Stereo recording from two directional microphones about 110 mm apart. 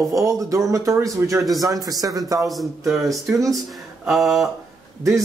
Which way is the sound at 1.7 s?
35° right (ahead or behind).